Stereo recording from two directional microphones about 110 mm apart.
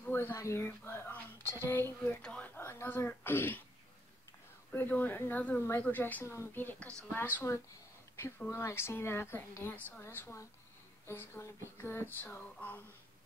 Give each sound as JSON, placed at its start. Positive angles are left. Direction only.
{"t": 0.0, "sound": "a woman's voice", "side_deg": 20}
{"t": 4.7, "sound": "a woman's voice", "side_deg": 15}